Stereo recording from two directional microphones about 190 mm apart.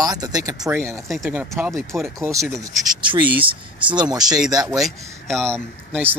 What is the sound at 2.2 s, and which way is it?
Speech, 15° right (ahead or behind).